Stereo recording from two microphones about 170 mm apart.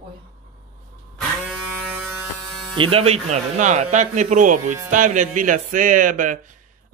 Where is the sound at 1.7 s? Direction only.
10° right (ahead or behind).